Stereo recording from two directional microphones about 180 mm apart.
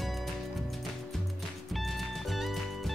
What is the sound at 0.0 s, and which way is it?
Music, centre (ahead or behind).